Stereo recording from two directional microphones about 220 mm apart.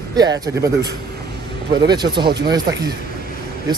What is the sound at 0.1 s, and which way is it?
A man's voice, 20° right (ahead or behind).